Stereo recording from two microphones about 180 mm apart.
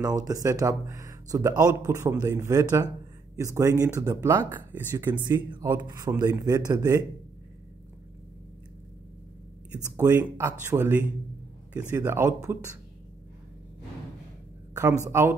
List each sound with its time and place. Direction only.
0.0 s speech: 20° right (ahead or behind)
9.9 s speech: 15° right (ahead or behind)
14.7 s a sound: 15° right (ahead or behind)
15.0 s speech: 15° right (ahead or behind)